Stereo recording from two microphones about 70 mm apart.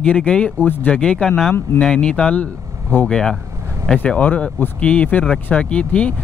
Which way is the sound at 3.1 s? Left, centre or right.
Centre.